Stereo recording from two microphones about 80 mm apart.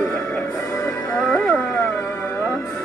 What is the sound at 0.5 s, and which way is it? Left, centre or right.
Music, left.